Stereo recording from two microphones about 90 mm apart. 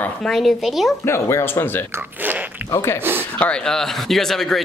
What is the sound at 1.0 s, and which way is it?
Speech, 30° left (ahead or behind).